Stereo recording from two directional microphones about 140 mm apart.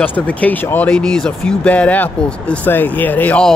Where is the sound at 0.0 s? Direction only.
10° left (ahead or behind).